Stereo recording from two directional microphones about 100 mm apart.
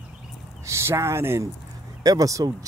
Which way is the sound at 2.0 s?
35° right (ahead or behind).